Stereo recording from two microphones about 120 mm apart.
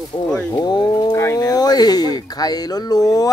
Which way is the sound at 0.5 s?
35° left (ahead or behind).